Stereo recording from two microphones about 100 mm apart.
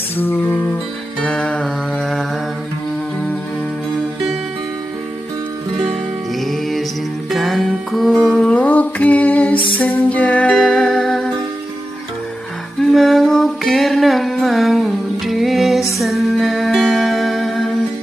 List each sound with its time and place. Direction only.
0.2 s music: 20° left (ahead or behind)
1.2 s music: 10° left (ahead or behind)
6.4 s music: centre (ahead or behind)
8.5 s mantra: 15° left (ahead or behind)
9.6 s lullaby: 55° left (ahead or behind)
9.8 s music: 15° left (ahead or behind)
12.8 s music: centre (ahead or behind)